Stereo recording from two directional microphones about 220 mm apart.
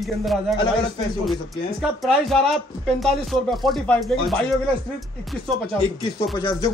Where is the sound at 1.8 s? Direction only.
Centre (ahead or behind).